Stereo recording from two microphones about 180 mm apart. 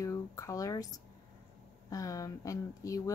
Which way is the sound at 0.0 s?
15° left (ahead or behind).